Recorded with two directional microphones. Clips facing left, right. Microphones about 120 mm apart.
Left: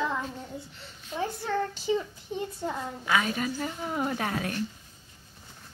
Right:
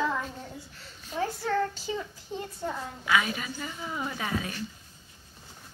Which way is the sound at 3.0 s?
35° left (ahead or behind).